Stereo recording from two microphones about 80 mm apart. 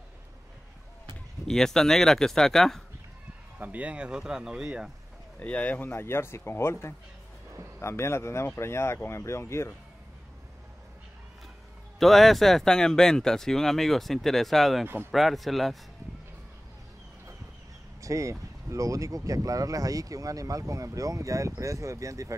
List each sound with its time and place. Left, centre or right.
1.5 s speech: centre
3.5 s speech: centre
5.4 s speech: centre; by 9.7 s left
12.0 s speech: centre
18.0 s speech: right